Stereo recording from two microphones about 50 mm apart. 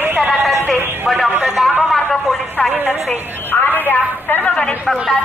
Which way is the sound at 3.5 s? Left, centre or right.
Left.